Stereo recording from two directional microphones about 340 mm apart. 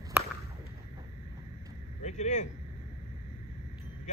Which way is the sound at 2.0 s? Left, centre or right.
Left.